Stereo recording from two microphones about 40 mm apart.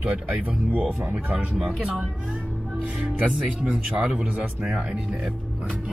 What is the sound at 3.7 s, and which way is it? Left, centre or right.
Speech, centre.